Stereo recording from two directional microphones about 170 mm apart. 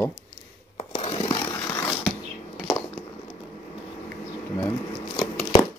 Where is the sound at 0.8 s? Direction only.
35° left (ahead or behind).